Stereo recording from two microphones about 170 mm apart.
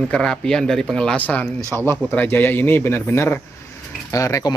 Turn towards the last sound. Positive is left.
turn(degrees=20)  # may be behind; listen again after turning